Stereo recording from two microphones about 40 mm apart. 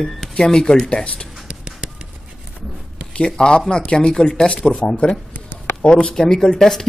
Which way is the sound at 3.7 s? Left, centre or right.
Left.